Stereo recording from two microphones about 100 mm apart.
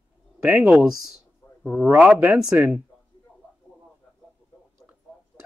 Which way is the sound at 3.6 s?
5° left (ahead or behind).